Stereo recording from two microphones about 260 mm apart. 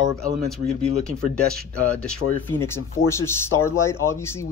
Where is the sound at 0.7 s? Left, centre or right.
Left.